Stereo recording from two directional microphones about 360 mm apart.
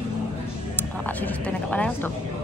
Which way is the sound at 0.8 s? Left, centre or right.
Centre.